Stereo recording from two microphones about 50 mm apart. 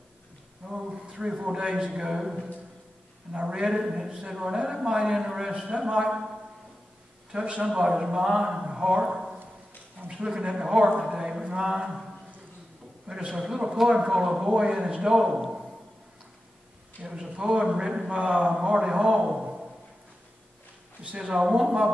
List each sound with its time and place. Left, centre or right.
0.8 s a man's voice: centre
1.9 s a man's voice: centre
3.3 s a man's voice: centre
7.3 s a man's voice: centre
8.6 s a sound: centre
10.0 s a man's voice: centre
13.1 s a man's voice: centre
17.0 s a man's voice: centre
21.0 s a man's voice: right